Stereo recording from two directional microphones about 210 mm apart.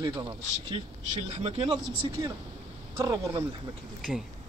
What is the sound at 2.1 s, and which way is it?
Speech, 15° right (ahead or behind).